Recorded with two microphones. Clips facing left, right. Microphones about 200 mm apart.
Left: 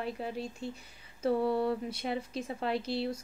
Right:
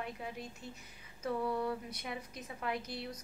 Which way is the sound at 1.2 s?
30° left (ahead or behind).